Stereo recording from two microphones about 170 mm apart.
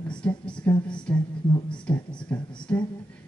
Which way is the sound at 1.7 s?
5° left (ahead or behind).